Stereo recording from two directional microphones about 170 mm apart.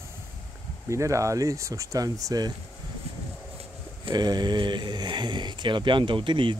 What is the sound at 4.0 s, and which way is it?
Speech, 25° right (ahead or behind).